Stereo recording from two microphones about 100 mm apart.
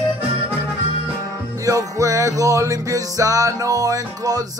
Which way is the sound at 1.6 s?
35° right (ahead or behind).